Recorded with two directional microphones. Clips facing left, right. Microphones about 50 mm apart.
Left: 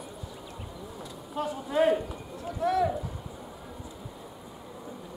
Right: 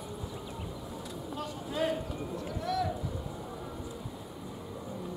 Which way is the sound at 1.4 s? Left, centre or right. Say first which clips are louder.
Left 8 dB; left.